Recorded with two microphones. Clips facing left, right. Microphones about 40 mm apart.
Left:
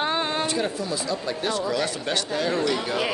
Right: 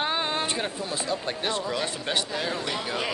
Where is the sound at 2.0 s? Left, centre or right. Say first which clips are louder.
Left 3 dB; centre.